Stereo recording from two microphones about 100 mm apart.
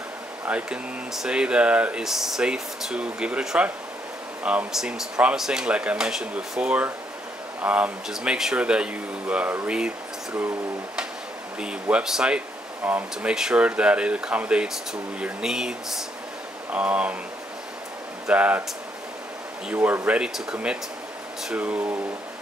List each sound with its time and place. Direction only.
0.5 s speech: 10° right (ahead or behind)
11.6 s speech: 5° right (ahead or behind)
18.2 s speech: 15° right (ahead or behind)
19.7 s speech: 15° right (ahead or behind)